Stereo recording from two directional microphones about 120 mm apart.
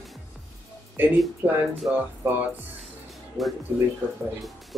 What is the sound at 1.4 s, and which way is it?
Speech, 15° right (ahead or behind).